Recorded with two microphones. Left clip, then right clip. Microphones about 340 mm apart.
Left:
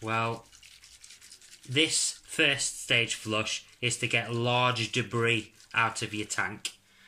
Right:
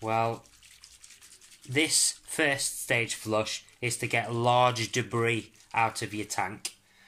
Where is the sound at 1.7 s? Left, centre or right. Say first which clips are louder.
Even; centre.